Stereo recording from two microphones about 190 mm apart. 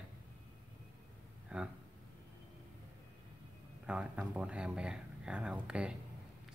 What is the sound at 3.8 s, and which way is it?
Speech, 5° right (ahead or behind).